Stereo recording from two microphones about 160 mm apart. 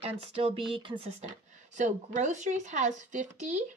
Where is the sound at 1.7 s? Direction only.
50° right (ahead or behind).